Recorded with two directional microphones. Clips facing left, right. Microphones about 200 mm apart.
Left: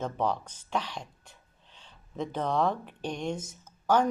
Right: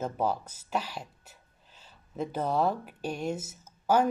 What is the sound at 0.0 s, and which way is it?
Speech, 5° right (ahead or behind).